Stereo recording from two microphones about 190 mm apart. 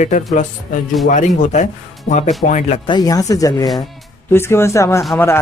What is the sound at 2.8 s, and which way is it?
Speech, 20° left (ahead or behind).